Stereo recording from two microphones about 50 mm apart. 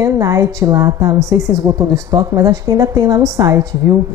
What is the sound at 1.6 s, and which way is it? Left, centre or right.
A woman's voice, right.